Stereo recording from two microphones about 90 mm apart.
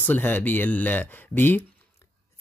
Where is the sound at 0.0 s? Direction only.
20° left (ahead or behind).